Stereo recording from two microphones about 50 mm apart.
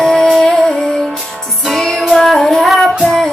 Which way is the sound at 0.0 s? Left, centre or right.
Centre.